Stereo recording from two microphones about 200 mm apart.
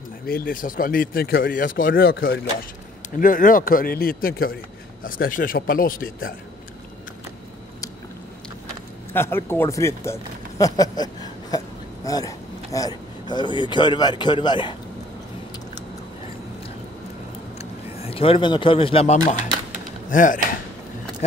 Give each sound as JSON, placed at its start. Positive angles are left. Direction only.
{"t": 0.3, "sound": "speech", "side_deg": 45}
{"t": 3.2, "sound": "speech", "side_deg": 45}
{"t": 9.1, "sound": "speech", "side_deg": 10}
{"t": 17.6, "sound": "speech", "side_deg": 30}